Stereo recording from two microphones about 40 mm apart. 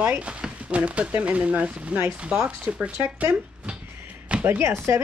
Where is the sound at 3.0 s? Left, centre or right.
Right.